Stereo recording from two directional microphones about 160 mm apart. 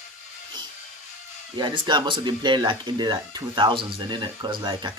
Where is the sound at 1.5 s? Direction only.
30° right (ahead or behind).